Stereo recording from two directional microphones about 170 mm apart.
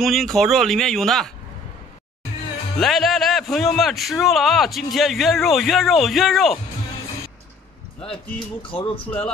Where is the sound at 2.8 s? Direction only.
Centre (ahead or behind).